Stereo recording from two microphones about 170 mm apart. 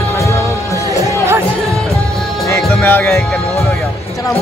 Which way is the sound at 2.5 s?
10° left (ahead or behind).